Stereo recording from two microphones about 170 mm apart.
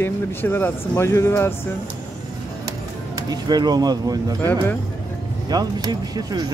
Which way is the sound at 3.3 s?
25° right (ahead or behind).